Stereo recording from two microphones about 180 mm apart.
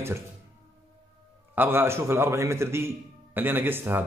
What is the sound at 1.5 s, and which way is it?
A man's voice, 10° right (ahead or behind).